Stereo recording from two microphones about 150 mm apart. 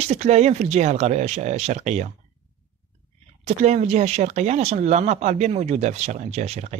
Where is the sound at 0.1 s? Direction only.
50° right (ahead or behind).